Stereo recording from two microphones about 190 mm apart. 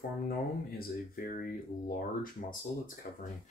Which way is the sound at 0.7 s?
50° left (ahead or behind).